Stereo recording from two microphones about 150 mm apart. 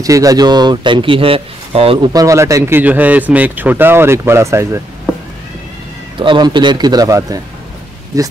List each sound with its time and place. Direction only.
0.0 s speech: 25° right (ahead or behind); by 2.1 s 40° right (ahead or behind)
2.1 s a man's voice: 20° right (ahead or behind)
6.1 s a man's voice: 30° right (ahead or behind)